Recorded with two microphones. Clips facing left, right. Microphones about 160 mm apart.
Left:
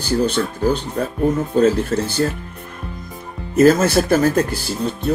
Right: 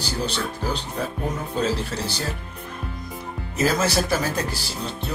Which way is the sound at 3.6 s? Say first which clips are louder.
Left 9 dB; 50° left (ahead or behind).